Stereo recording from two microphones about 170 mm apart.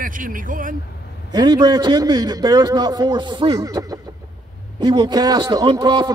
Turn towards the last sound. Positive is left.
turn(degrees=-25)  # may be behind; listen again after turning